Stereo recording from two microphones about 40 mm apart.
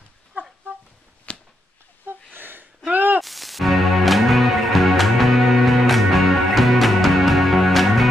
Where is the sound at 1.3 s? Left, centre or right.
Left.